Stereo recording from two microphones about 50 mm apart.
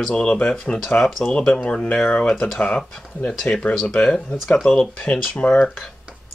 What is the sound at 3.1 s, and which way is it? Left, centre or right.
Speech, left.